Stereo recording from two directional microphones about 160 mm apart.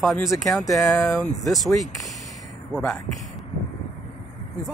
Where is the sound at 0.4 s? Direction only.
Centre (ahead or behind).